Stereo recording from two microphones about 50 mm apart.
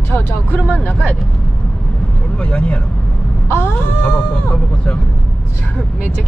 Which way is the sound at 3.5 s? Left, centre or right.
Left.